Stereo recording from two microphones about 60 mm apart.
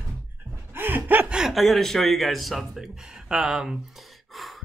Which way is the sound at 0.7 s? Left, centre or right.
Right.